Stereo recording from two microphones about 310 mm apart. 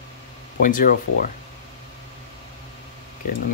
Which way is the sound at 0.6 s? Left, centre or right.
Left.